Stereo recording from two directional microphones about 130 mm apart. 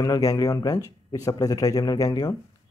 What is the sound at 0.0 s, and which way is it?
Speech, 25° left (ahead or behind).